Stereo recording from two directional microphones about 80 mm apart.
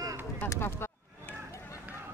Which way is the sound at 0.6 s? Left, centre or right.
Left.